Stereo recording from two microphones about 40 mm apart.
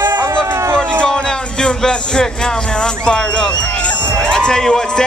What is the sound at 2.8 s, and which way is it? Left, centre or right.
Music, centre.